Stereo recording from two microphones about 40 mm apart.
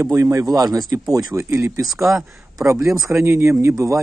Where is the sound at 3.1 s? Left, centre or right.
Right.